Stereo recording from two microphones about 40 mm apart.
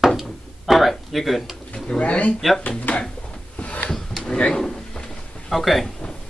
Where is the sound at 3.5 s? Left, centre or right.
Left.